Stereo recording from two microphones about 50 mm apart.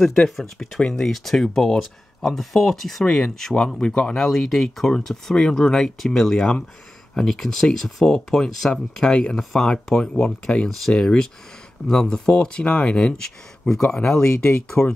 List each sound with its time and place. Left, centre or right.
0.4 s speech: centre
4.2 s speech: centre